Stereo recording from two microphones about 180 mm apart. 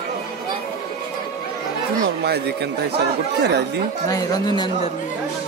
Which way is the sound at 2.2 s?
65° right (ahead or behind).